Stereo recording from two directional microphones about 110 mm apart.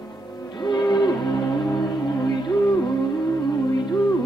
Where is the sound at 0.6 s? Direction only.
40° left (ahead or behind).